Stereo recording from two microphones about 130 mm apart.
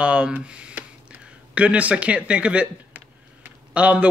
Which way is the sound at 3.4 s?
10° right (ahead or behind).